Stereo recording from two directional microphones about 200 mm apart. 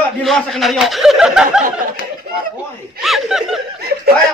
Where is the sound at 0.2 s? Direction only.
Centre (ahead or behind).